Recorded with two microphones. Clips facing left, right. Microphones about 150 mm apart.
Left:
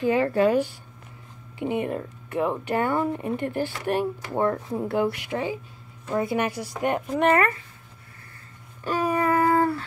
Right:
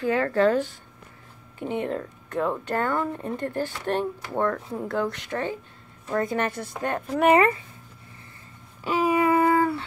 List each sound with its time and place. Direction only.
0.0 s speech: 15° left (ahead or behind)
7.1 s speech: 5° right (ahead or behind)
7.3 s speech: 20° right (ahead or behind)
8.8 s a sound: 5° right (ahead or behind)